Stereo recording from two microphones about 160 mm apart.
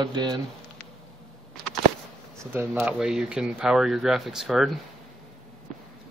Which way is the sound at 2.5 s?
15° right (ahead or behind).